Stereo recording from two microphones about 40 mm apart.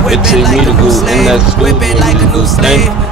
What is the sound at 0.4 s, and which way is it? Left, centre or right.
Speech, centre.